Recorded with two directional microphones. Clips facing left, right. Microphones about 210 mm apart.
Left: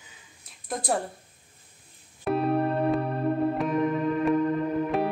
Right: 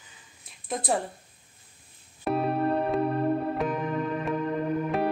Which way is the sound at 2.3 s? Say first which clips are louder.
Left 1 dB; centre (ahead or behind).